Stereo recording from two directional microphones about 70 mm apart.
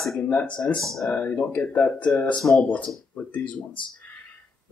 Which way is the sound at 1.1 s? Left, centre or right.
Left.